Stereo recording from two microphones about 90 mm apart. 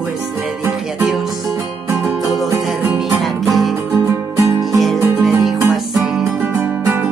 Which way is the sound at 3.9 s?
35° right (ahead or behind).